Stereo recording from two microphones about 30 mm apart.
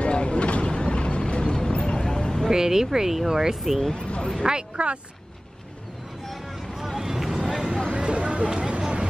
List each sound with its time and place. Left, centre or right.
0.0 s a sound: left
2.5 s speech: centre
3.9 s speech: left
4.7 s speech: right
7.0 s vehicle: centre
7.9 s a sound: right